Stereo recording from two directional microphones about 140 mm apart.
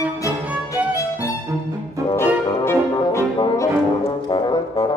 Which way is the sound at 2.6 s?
15° left (ahead or behind).